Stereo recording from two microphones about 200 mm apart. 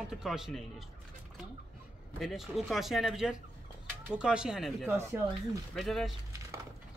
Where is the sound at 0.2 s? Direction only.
Centre (ahead or behind).